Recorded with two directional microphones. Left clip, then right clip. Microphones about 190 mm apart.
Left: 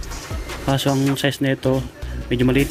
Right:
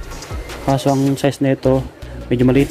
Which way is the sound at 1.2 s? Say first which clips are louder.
Right 4 dB; 15° right (ahead or behind).